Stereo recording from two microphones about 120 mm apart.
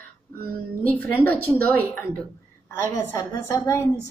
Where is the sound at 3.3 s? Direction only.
20° left (ahead or behind).